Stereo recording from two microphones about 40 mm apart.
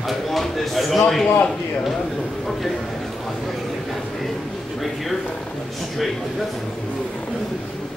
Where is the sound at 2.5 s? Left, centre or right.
Centre.